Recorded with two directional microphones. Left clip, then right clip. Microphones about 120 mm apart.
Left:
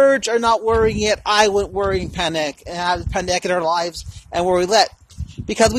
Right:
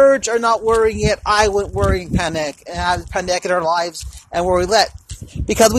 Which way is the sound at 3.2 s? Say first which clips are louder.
Right 2 dB; 35° left (ahead or behind).